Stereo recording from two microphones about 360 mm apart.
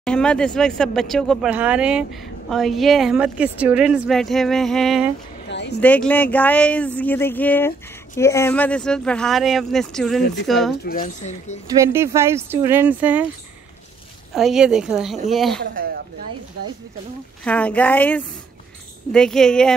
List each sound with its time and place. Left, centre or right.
0.0 s a woman's voice: centre
5.5 s a sound: left
5.8 s a woman's voice: centre
10.9 s speech: left
11.8 s speech: centre
14.3 s a woman's voice: centre
15.6 s speech: right
17.5 s a woman's voice: centre